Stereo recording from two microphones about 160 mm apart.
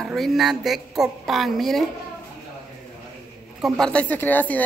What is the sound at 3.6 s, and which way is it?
Speech, 5° left (ahead or behind).